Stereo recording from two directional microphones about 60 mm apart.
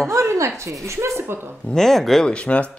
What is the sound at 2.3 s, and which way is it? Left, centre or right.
Speech, left.